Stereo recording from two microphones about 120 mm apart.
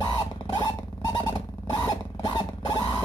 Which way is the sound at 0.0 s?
35° left (ahead or behind).